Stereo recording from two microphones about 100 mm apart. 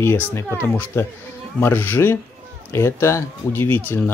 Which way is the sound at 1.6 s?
20° left (ahead or behind).